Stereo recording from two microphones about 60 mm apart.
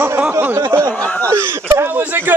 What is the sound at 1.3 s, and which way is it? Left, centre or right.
Speech, right.